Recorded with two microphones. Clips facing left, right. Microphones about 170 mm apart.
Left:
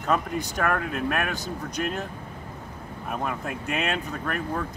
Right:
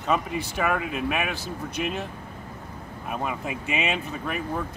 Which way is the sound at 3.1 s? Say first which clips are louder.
Even; 5° right (ahead or behind).